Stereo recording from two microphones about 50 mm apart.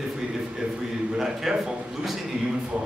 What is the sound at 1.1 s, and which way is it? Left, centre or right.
Speech, centre.